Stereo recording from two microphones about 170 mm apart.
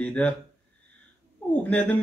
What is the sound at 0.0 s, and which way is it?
Speech, 5° left (ahead or behind).